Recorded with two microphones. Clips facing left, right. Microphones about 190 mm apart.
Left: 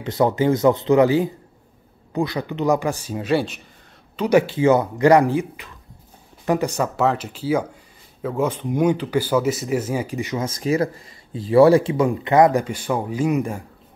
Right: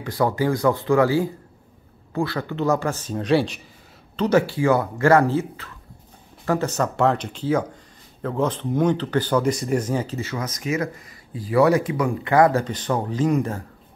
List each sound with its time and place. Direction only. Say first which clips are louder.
0.0 s speech: left 3 dB; 20° left (ahead or behind); by 3.6 s centre (ahead or behind)
4.2 s speech: left 2 dB; 15° left (ahead or behind)
10.4 s speech: left 5 dB; 30° left (ahead or behind); by 13.6 s 10° left (ahead or behind)